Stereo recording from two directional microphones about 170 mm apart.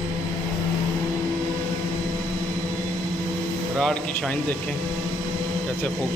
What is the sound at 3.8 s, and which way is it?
Speech, 5° left (ahead or behind).